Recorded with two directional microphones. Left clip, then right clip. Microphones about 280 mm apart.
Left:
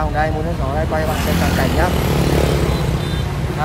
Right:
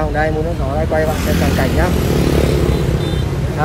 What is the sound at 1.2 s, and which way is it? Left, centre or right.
Speech, left.